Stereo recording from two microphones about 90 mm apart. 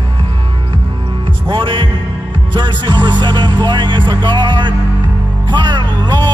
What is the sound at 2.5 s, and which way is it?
Music, 55° right (ahead or behind).